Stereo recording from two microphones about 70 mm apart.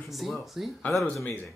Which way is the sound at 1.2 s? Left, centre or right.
Left.